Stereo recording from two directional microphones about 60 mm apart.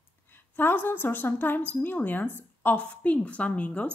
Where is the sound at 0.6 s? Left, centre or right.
Left.